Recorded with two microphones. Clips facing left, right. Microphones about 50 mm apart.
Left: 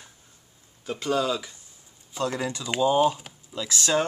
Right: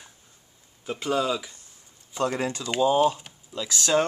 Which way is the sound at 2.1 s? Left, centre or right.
Right.